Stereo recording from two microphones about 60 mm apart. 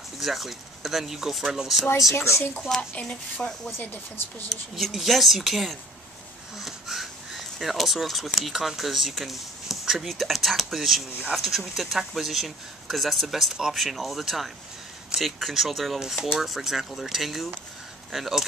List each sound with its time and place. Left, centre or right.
0.2 s speech: centre
2.2 s speech: left
3.0 s speech: left
4.7 s speech: centre